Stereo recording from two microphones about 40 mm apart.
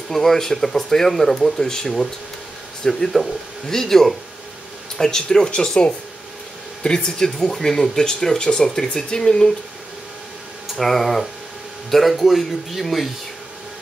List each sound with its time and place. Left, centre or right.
0.1 s speech: centre
7.1 s speech: centre
10.8 s speech: centre